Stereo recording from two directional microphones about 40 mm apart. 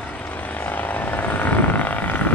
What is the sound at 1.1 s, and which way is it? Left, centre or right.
Vehicle, left.